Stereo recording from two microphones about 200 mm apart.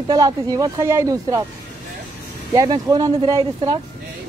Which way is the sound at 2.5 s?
20° right (ahead or behind).